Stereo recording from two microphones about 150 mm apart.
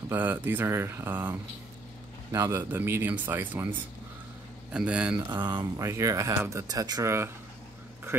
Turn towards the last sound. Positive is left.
turn(degrees=-20)  # may be behind; listen again after turning